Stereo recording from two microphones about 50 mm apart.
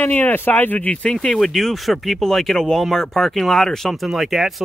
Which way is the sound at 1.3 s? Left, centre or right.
Centre.